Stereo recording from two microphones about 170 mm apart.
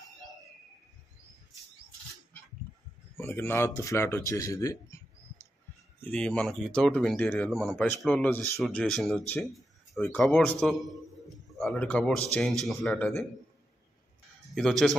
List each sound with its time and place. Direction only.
3.2 s a man's voice: 15° left (ahead or behind)
5.9 s a man's voice: 5° left (ahead or behind)
14.4 s speech: centre (ahead or behind)